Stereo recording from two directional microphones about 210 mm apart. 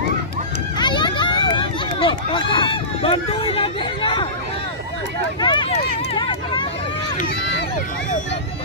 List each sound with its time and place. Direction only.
0.7 s run: 20° left (ahead or behind)
5.4 s speech: 20° left (ahead or behind)